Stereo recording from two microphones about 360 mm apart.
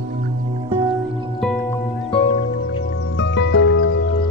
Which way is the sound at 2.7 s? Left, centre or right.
Left.